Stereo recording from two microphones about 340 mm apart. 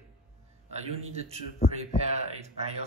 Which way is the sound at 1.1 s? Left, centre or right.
Centre.